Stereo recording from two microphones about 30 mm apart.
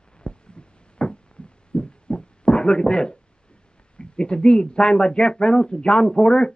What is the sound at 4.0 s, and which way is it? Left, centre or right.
Speech, left.